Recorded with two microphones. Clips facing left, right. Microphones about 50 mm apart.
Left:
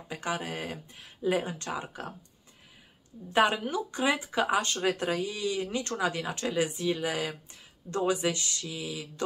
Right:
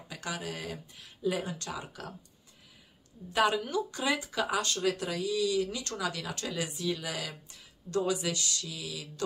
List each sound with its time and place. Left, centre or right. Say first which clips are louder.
0.1 s speech: left 4 dB; left
3.3 s speech: left 2 dB; left